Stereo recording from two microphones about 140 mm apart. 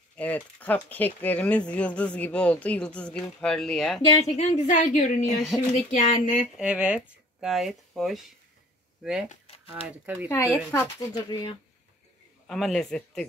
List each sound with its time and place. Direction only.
0.1 s speech: 10° left (ahead or behind)
4.0 s a woman's voice: 35° left (ahead or behind)
4.4 s a woman's voice: 55° left (ahead or behind)
5.2 s speech: centre (ahead or behind)
5.9 s a woman's voice: 55° left (ahead or behind)
6.5 s speech: 10° right (ahead or behind)
10.7 s speech: 15° left (ahead or behind)
11.2 s a woman's voice: 30° left (ahead or behind)
12.4 s a man's voice: centre (ahead or behind)